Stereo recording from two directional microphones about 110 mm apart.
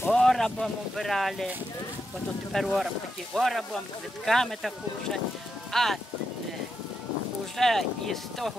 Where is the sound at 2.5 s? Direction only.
Centre (ahead or behind).